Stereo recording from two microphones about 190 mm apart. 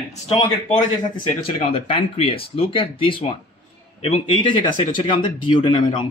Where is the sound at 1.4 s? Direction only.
30° left (ahead or behind).